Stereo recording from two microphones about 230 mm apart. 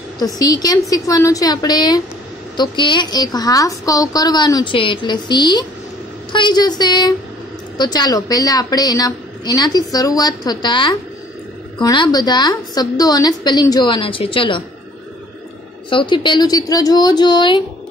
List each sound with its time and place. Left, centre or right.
0.2 s a woman's voice: centre
15.9 s a woman's voice: left